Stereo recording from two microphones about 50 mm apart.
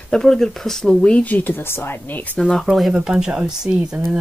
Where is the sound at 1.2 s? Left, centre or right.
Left.